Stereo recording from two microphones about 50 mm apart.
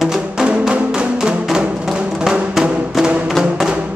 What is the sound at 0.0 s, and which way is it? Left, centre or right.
Music, centre.